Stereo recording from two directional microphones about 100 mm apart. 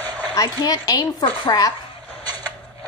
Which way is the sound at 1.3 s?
55° left (ahead or behind).